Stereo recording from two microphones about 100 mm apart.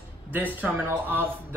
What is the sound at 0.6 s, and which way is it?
Speech, 20° right (ahead or behind).